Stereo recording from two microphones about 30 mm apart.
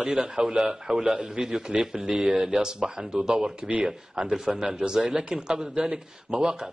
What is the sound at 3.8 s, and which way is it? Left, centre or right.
A man's voice, right.